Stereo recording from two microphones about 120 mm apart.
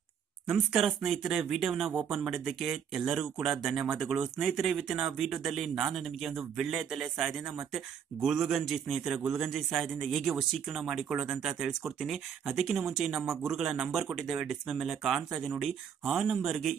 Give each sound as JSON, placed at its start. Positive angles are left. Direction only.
{"t": 0.5, "sound": "speech", "side_deg": -5}